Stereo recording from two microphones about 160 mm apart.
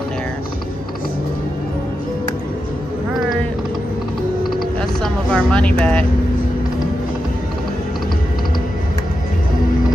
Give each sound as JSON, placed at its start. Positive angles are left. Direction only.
{"t": 4.4, "sound": "typing", "side_deg": 70}
{"t": 4.7, "sound": "vehicle", "side_deg": 5}